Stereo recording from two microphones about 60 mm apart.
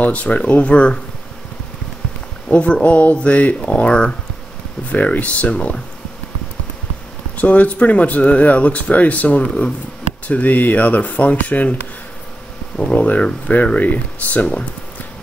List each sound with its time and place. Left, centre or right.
0.0 s speech: left
2.5 s speech: centre
7.3 s speech: left
12.7 s speech: left